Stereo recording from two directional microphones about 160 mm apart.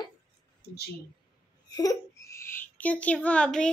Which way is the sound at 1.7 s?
20° left (ahead or behind).